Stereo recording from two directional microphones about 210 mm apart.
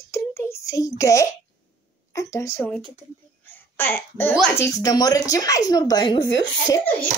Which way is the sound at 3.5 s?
10° left (ahead or behind).